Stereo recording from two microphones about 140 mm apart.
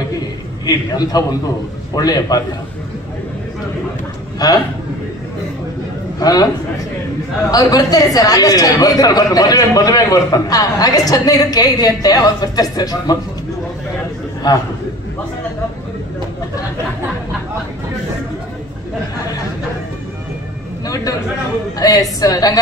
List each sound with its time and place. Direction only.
0.7 s a man's voice: 30° left (ahead or behind)
4.4 s a man's voice: 25° left (ahead or behind)
6.1 s a man's voice: 25° left (ahead or behind)
7.5 s a man's voice: 25° left (ahead or behind)
20.8 s a sound: 25° left (ahead or behind)
21.7 s a man's voice: 25° left (ahead or behind)